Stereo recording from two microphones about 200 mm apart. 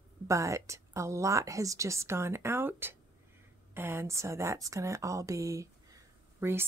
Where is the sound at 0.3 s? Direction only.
15° right (ahead or behind).